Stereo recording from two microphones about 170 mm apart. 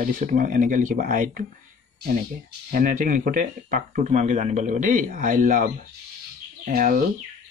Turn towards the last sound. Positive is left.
turn(degrees=-55)  # may be behind; listen again after turning